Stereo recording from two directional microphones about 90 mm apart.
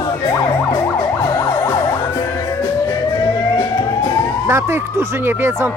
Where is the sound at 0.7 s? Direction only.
65° left (ahead or behind).